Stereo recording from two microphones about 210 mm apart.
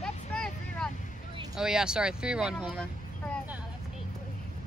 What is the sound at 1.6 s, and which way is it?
Speech, 5° right (ahead or behind).